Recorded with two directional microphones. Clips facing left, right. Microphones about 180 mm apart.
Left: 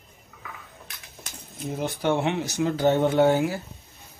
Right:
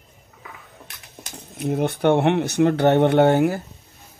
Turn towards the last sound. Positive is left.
turn(degrees=-60)  # may be behind; listen again after turning